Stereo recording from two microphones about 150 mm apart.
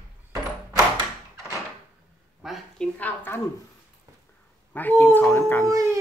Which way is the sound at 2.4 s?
Centre (ahead or behind).